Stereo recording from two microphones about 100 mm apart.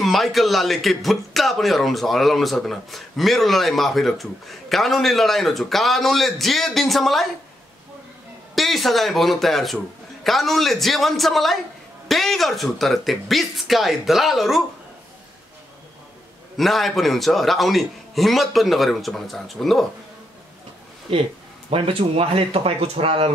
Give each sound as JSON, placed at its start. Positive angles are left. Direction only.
{"t": 0.0, "sound": "a man's voice", "side_deg": 0}
{"t": 8.5, "sound": "a man's voice", "side_deg": 0}
{"t": 16.5, "sound": "a man's voice", "side_deg": 0}
{"t": 21.1, "sound": "speech", "side_deg": -75}